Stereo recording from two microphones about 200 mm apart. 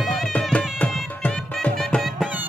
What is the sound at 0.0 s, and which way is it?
Music, centre (ahead or behind).